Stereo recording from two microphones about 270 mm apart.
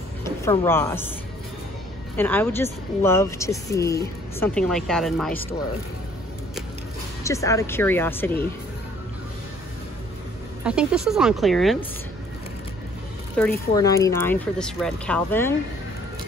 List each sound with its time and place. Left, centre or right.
0.2 s speech: centre
2.1 s speech: centre
7.2 s speech: centre
10.6 s speech: centre
13.4 s speech: centre